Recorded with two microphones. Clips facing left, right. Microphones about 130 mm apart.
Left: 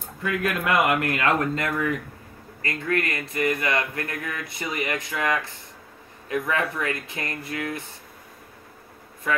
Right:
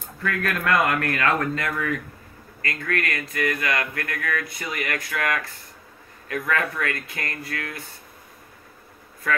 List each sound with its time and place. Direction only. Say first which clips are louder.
0.2 s speech: left 1 dB; 15° left (ahead or behind)